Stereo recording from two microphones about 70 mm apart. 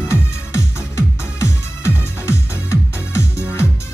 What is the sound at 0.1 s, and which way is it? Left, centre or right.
Music, left.